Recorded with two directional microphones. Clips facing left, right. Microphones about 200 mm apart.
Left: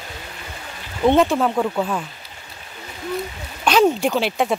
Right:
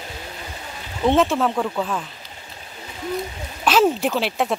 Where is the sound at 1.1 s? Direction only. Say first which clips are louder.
Left 2 dB; centre (ahead or behind).